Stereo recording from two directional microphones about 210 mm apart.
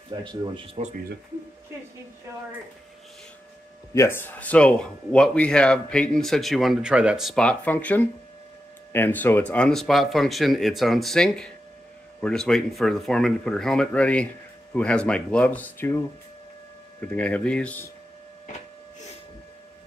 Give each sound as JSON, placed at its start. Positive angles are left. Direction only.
{"t": 0.8, "sound": "speech", "side_deg": -35}
{"t": 3.9, "sound": "speech", "side_deg": 10}
{"t": 17.0, "sound": "speech", "side_deg": 5}